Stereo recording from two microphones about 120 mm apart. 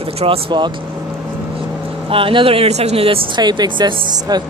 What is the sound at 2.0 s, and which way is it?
A man's voice, 50° right (ahead or behind).